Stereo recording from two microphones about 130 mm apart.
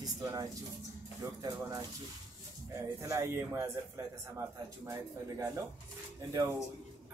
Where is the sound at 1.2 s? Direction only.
30° right (ahead or behind).